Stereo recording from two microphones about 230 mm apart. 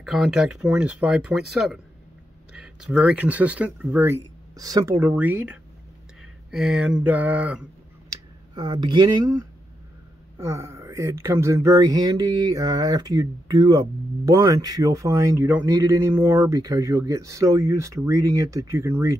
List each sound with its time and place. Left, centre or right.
0.0 s speech: centre
8.1 s speech: centre